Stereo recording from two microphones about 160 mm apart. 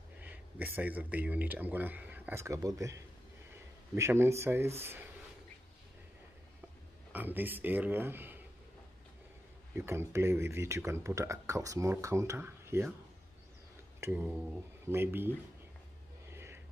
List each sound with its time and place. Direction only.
0.2 s speech: 10° right (ahead or behind)
7.1 s speech: 10° right (ahead or behind)
9.8 s speech: 15° right (ahead or behind)
14.0 s speech: 15° right (ahead or behind)
16.3 s a sound: 15° right (ahead or behind)